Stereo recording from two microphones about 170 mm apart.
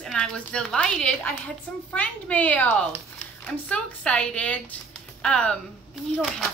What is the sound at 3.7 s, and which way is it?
A woman's voice, 5° left (ahead or behind).